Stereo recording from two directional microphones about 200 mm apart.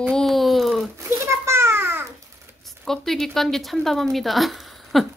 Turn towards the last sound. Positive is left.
turn(degrees=0)  # may be behind; listen again after turning